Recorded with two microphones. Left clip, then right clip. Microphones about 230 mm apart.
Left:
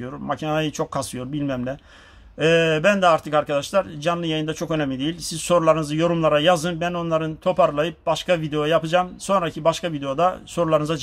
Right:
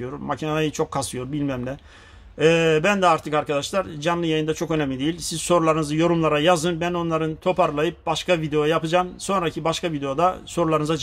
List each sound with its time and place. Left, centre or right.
0.3 s speech: centre